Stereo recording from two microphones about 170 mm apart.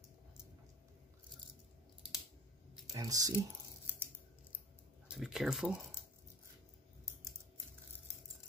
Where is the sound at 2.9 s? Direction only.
20° right (ahead or behind).